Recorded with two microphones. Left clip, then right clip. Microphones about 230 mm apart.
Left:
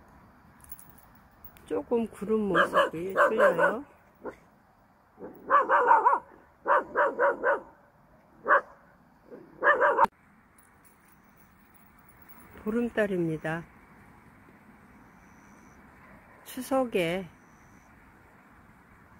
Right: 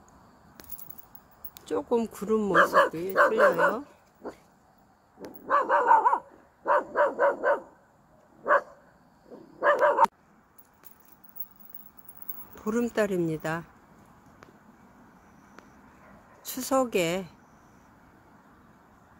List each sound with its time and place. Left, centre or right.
1.7 s speech: centre
2.5 s speech: right
5.5 s dog: right
8.4 s speech: right
9.6 s dog: right
12.8 s speech: centre
16.8 s speech: centre